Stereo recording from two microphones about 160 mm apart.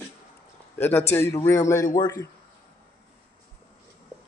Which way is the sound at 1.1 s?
15° left (ahead or behind).